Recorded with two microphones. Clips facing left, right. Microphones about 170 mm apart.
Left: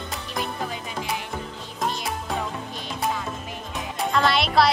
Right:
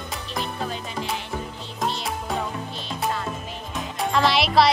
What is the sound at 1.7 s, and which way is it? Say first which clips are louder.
Music: right 1 dB; centre (ahead or behind).